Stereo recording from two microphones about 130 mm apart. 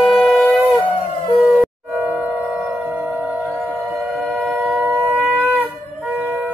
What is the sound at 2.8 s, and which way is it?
Singing bowl, 20° right (ahead or behind).